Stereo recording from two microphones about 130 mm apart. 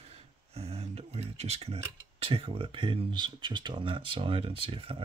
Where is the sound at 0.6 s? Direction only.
55° right (ahead or behind).